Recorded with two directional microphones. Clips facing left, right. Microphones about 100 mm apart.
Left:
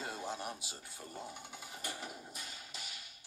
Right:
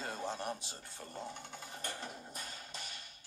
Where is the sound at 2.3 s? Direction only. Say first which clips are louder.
Right 2 dB; 40° right (ahead or behind).